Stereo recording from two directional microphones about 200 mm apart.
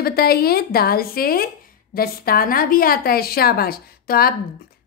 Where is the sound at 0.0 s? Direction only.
50° left (ahead or behind).